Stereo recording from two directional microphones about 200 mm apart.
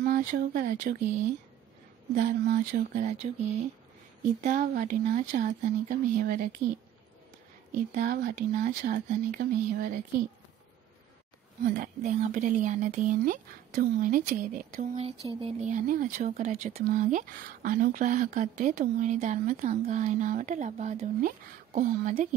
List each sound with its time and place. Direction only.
0.0 s speech: 45° right (ahead or behind)
2.1 s speech: 40° right (ahead or behind)
4.4 s speech: 40° right (ahead or behind)
7.7 s speech: 40° right (ahead or behind)
11.7 s speech: 40° right (ahead or behind)